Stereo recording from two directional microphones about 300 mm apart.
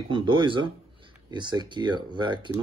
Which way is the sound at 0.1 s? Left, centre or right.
Centre.